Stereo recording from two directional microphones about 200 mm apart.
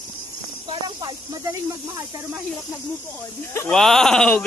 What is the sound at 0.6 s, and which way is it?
Speech, 25° right (ahead or behind).